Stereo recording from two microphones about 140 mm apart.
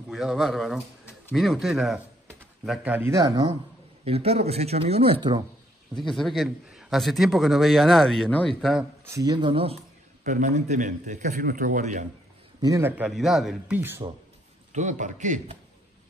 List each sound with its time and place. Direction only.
0.1 s a man's voice: centre (ahead or behind)
3.1 s speech: 25° right (ahead or behind)
4.0 s speech: 45° right (ahead or behind)
5.9 s a man's voice: centre (ahead or behind)
9.0 s speech: 25° right (ahead or behind); by 9.8 s 40° right (ahead or behind)
10.2 s a man's voice: 65° right (ahead or behind)
12.6 s speech: 20° right (ahead or behind)
12.9 s a man's voice: 5° right (ahead or behind)
13.7 s speech: 15° right (ahead or behind)
14.7 s a man's voice: 60° right (ahead or behind)